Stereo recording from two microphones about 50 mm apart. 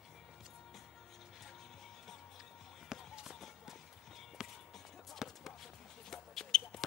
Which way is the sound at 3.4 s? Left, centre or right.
Centre.